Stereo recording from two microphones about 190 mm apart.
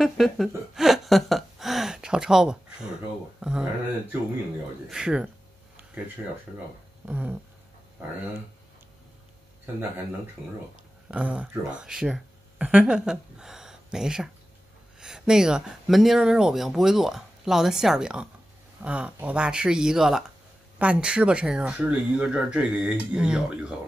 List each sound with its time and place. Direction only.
0.0 s speech: centre (ahead or behind)
0.7 s gasp: centre (ahead or behind)
4.8 s speech: 5° right (ahead or behind)
7.1 s a sound: 5° right (ahead or behind)
11.1 s speech: 5° right (ahead or behind)